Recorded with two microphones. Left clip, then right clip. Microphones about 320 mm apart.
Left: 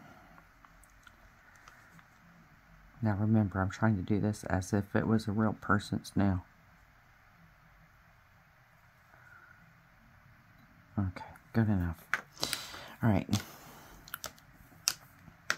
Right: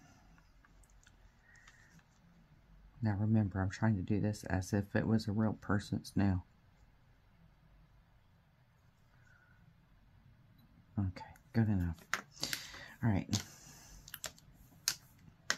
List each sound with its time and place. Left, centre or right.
3.0 s speech: centre
11.0 s speech: centre
12.4 s a sound: left